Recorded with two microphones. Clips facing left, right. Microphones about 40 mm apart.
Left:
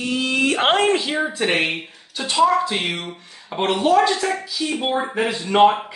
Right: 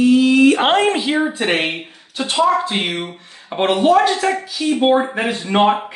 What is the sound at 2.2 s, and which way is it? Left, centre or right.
Speech, right.